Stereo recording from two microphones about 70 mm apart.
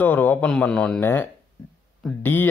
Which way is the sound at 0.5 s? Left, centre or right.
Centre.